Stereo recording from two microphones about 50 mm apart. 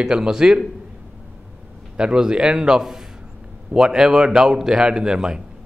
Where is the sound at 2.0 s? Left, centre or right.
Centre.